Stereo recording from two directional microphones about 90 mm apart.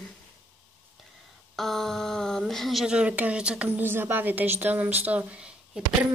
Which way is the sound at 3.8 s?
25° right (ahead or behind).